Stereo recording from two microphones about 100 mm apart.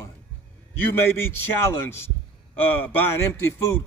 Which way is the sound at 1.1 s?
25° left (ahead or behind).